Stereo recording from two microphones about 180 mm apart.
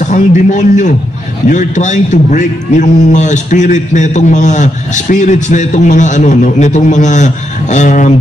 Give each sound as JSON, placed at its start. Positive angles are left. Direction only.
{"t": 0.0, "sound": "a man's voice", "side_deg": 40}